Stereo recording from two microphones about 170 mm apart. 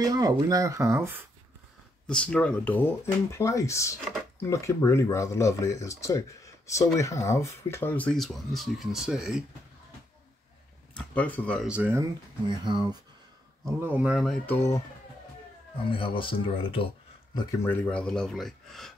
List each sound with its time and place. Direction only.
0.0 s speech: 20° right (ahead or behind)
2.0 s speech: 5° left (ahead or behind)
11.0 s speech: 10° left (ahead or behind)
11.6 s speech: 10° right (ahead or behind)
12.4 s speech: 25° right (ahead or behind)
13.7 s speech: 10° right (ahead or behind)
14.4 s speech: 15° left (ahead or behind)
15.9 s speech: 30° left (ahead or behind)
17.6 s speech: 5° left (ahead or behind)